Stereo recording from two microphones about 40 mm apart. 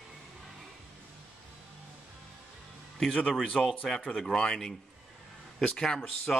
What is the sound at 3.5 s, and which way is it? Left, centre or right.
Speech, centre.